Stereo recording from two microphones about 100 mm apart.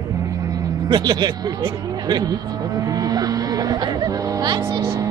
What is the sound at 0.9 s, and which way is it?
Speech, 45° right (ahead or behind).